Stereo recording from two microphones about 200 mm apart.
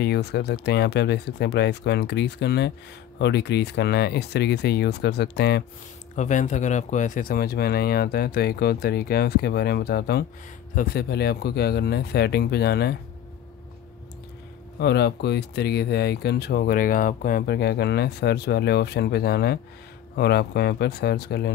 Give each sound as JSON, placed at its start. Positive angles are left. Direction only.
{"t": 0.0, "sound": "speech", "side_deg": 55}
{"t": 6.1, "sound": "speech", "side_deg": 40}
{"t": 14.8, "sound": "speech", "side_deg": 55}